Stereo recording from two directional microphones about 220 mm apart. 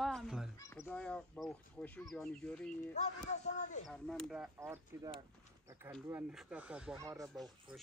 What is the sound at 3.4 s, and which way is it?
Speech, 35° left (ahead or behind).